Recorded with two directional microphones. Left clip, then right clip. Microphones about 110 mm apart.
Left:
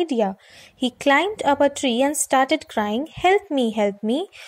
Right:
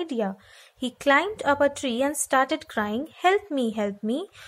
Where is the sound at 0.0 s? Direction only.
30° left (ahead or behind).